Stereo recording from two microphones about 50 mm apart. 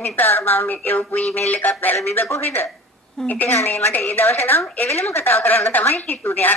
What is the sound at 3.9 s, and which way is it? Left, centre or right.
Speech, left.